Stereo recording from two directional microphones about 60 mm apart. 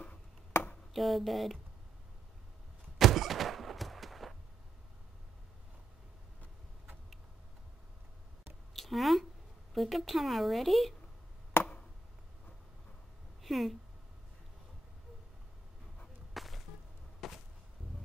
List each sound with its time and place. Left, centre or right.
0.9 s speech: centre
3.0 s thunk: centre
8.7 s a sound: centre
9.8 s speech: centre
11.6 s chop: left
13.4 s speech: centre
16.3 s whip: centre
17.2 s a sound: centre